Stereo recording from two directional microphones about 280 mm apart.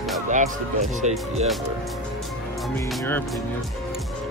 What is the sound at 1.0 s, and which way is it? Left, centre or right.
Speech, right.